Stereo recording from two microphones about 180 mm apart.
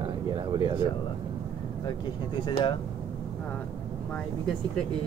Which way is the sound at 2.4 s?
25° left (ahead or behind).